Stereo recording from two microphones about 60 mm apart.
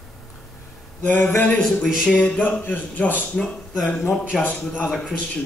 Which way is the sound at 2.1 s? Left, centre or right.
Left.